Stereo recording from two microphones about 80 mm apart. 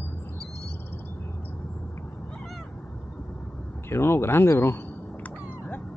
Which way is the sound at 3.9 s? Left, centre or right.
Left.